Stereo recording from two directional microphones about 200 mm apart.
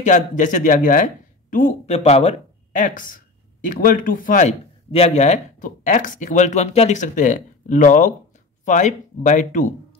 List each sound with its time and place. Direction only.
0.0 s a man's voice: 40° left (ahead or behind)